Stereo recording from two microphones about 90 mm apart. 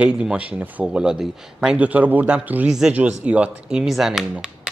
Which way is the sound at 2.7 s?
5° right (ahead or behind).